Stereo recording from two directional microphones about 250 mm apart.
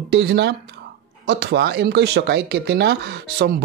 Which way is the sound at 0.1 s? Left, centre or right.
Right.